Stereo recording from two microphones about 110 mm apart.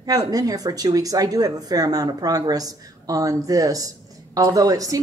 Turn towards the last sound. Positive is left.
turn(degrees=-35)  # may be behind; listen again after turning